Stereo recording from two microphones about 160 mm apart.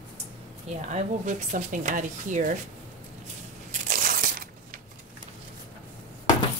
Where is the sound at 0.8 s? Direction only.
50° right (ahead or behind).